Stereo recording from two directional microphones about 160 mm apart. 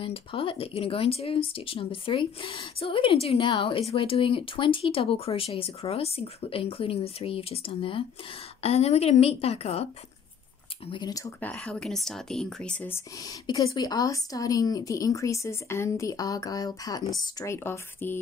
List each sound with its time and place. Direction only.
0.0 s speech: 35° left (ahead or behind)
10.9 s speech: 25° left (ahead or behind)
11.4 s speech: 5° left (ahead or behind)
13.2 s speech: 25° left (ahead or behind)